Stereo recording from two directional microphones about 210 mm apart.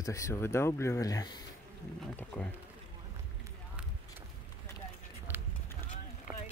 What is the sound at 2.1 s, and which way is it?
Speech, 5° left (ahead or behind).